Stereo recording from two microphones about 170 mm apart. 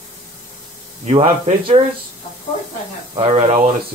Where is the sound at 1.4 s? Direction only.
35° right (ahead or behind).